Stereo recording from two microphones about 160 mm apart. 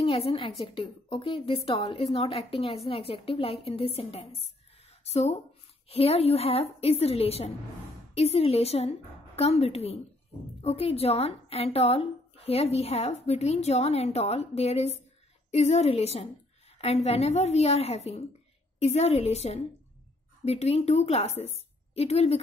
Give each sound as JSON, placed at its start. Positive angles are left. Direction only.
{"t": 0.0, "sound": "a woman's voice", "side_deg": 35}